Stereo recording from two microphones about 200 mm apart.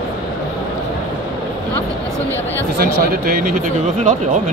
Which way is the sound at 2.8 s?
45° right (ahead or behind).